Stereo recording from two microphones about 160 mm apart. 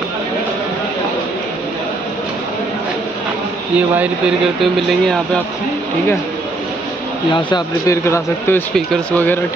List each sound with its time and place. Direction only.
3.7 s speech: 10° right (ahead or behind)
5.0 s speech: 5° left (ahead or behind)
7.3 s speech: 30° left (ahead or behind)
8.7 s speech: 5° left (ahead or behind)